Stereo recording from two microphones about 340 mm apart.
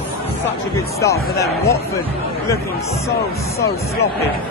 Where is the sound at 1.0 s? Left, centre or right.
Centre.